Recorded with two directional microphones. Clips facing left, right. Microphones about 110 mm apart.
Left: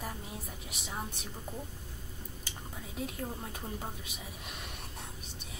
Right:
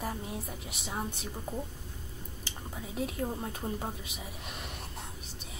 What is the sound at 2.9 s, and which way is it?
Speech, centre (ahead or behind).